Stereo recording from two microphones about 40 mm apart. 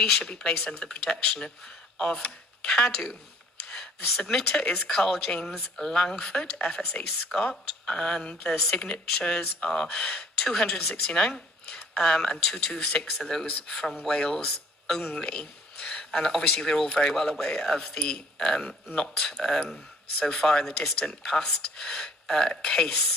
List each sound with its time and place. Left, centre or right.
0.2 s speech: left
7.3 s speech: centre
14.4 s a sound: centre
15.1 s speech: left